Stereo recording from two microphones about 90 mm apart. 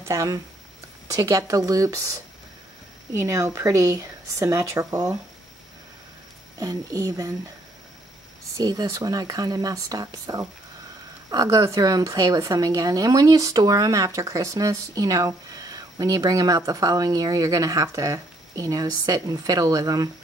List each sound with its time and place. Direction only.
0.0 s speech: 35° right (ahead or behind)
6.6 s speech: 40° right (ahead or behind)
8.5 s speech: 50° right (ahead or behind)